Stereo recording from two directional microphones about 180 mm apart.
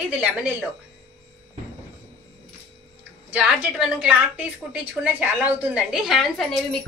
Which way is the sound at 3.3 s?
5° right (ahead or behind).